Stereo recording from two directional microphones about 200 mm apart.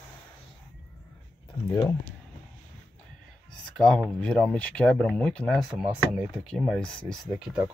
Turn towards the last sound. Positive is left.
turn(degrees=-5)  # may be behind; listen again after turning